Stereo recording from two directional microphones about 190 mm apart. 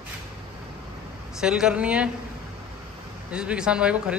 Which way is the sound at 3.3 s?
5° right (ahead or behind).